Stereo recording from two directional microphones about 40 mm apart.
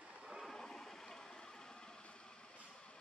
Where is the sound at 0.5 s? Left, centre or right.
Centre.